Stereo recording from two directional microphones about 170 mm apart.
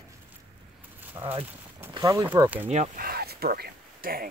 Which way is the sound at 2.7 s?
50° right (ahead or behind).